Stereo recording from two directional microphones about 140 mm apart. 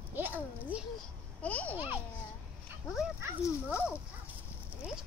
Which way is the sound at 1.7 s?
15° right (ahead or behind).